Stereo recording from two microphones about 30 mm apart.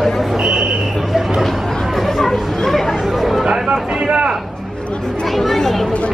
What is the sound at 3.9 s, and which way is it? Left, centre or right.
Speech, right.